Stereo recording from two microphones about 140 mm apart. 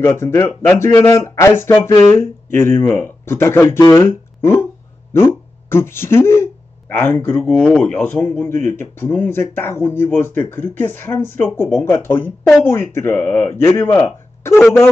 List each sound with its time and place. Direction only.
0.0 s speech: 15° left (ahead or behind)